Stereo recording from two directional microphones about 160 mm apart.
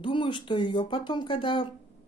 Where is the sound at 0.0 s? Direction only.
30° left (ahead or behind).